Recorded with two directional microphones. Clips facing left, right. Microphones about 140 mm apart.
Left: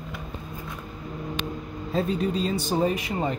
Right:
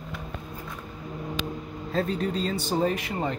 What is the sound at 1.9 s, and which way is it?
Speech, 15° left (ahead or behind).